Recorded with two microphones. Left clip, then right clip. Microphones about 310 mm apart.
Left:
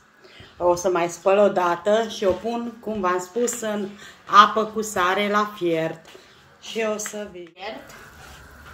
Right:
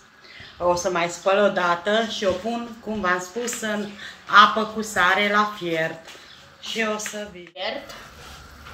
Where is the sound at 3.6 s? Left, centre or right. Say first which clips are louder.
Even; left.